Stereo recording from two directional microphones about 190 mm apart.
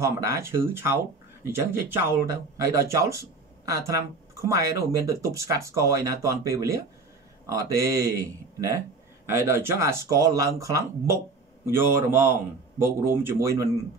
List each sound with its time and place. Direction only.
0.0 s a man's voice: 15° right (ahead or behind)